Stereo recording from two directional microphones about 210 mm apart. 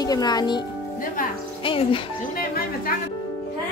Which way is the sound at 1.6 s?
25° left (ahead or behind).